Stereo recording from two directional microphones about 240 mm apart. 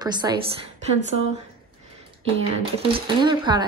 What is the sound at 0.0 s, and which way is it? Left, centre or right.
Speech, centre.